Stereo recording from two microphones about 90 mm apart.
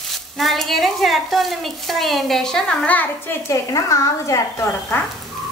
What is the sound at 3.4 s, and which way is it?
A woman's voice, 35° left (ahead or behind).